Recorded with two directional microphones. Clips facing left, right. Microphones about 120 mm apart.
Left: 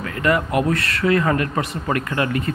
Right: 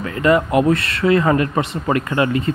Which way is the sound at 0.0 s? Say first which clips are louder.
Right 4 dB; 25° right (ahead or behind).